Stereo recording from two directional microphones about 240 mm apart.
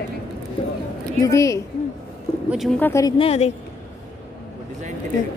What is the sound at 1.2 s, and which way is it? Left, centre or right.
Speech, centre.